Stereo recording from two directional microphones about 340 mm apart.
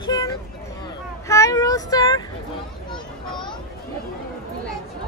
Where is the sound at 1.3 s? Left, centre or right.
Centre.